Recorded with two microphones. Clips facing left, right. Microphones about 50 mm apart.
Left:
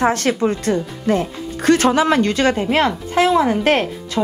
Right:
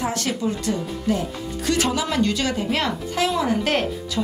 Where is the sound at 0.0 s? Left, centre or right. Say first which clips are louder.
Left 7 dB; left.